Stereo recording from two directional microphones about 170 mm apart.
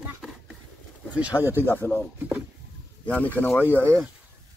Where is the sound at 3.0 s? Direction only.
10° left (ahead or behind).